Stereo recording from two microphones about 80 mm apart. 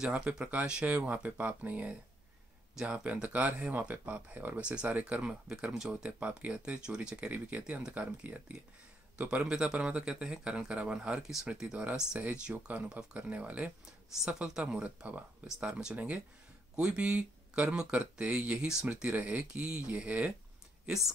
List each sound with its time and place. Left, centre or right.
0.0 s speech: centre
20.8 s speech: centre